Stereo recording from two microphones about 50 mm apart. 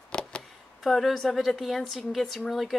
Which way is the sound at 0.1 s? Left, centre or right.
Centre.